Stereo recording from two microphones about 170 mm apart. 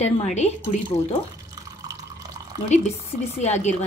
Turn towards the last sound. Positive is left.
turn(degrees=40)  # may be behind; listen again after turning